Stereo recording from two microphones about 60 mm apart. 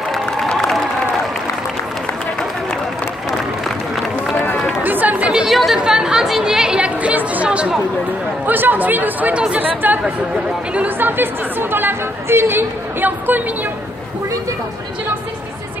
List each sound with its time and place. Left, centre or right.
0.5 s applause: centre
4.8 s chatter: right
5.5 s chatter: centre
5.8 s chatter: centre
7.4 s speech: centre
8.5 s a woman's voice: right
11.0 s a woman's voice: right